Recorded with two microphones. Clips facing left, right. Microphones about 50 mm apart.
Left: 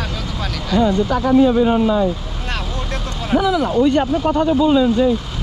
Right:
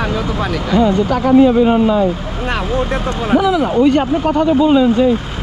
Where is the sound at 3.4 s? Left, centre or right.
Right.